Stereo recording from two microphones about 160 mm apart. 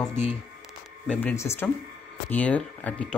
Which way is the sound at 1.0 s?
10° left (ahead or behind).